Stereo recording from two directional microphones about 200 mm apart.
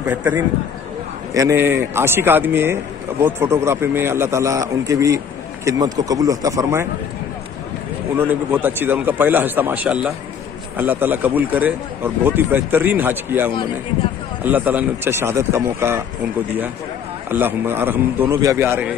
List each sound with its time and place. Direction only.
0.0 s a man's voice: 10° right (ahead or behind)
8.2 s a man's voice: 10° right (ahead or behind)
17.3 s a man's voice: 10° right (ahead or behind)